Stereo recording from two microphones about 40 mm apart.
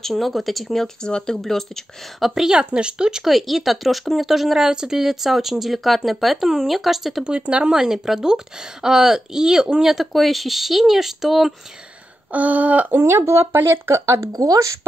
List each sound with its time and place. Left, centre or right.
0.0 s speech: centre
1.0 s speech: centre
2.1 s speech: centre
2.5 s speech: right
3.3 s speech: centre
7.2 s speech: right
7.7 s speech: centre
12.3 s a sound: right
13.2 s speech: right